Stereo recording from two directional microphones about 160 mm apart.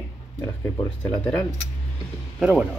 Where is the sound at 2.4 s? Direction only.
5° right (ahead or behind).